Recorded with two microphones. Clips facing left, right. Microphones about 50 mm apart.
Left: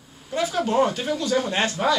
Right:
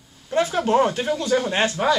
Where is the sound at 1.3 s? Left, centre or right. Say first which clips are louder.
Right 2 dB; right.